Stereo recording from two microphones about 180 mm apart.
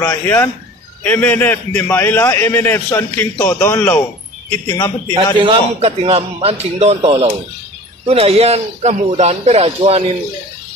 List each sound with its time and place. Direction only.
0.0 s a man's voice: 15° left (ahead or behind)
4.6 s a man's voice: 20° left (ahead or behind)
5.1 s a man's voice: 30° right (ahead or behind)